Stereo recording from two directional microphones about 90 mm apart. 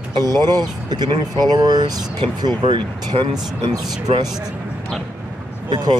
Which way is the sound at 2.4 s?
60° right (ahead or behind).